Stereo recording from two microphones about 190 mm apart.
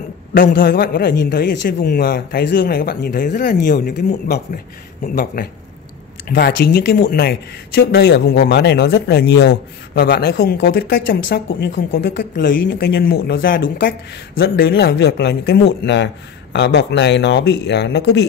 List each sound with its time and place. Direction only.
0.4 s speech: 50° left (ahead or behind)
5.0 s speech: 45° left (ahead or behind); by 18.2 s 65° left (ahead or behind)